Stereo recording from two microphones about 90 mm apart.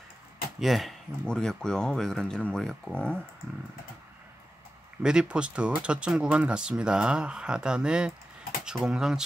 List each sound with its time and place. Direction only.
0.6 s speech: centre (ahead or behind)
5.0 s speech: 10° right (ahead or behind)